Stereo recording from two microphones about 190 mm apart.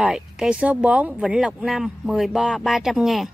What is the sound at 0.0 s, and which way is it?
Speech, 5° right (ahead or behind).